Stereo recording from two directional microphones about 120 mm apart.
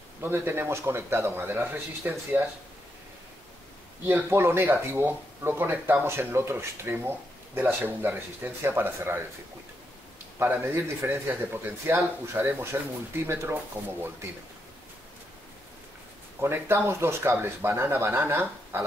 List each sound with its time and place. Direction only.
0.2 s speech: 20° right (ahead or behind)
4.0 s speech: 20° right (ahead or behind)
10.4 s speech: 20° right (ahead or behind)
16.3 s speech: 20° right (ahead or behind)